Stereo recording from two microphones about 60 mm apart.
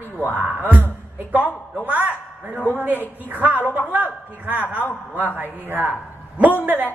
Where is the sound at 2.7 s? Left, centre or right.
Right.